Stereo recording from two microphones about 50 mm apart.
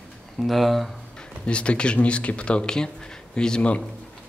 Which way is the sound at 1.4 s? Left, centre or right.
Left.